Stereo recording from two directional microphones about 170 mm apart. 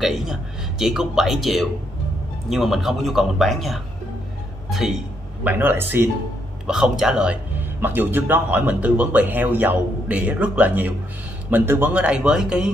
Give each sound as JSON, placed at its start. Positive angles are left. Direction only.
{"t": 0.0, "sound": "a man's voice", "side_deg": 0}
{"t": 6.7, "sound": "a man's voice", "side_deg": -5}